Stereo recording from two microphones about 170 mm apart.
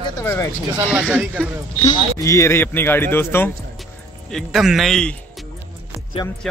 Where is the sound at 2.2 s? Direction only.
15° left (ahead or behind).